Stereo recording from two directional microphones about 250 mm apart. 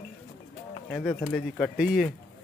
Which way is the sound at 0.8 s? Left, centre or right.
Centre.